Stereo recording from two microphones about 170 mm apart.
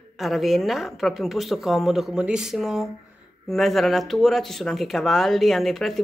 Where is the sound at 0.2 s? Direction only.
Centre (ahead or behind).